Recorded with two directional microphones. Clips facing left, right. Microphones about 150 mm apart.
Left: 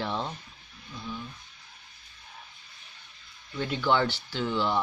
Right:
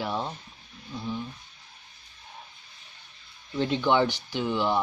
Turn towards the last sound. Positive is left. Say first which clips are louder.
# right 2 dB
turn(degrees=-15)  # may be behind; listen again after turning